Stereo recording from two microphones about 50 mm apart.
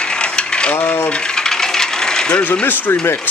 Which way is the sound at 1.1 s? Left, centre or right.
Centre.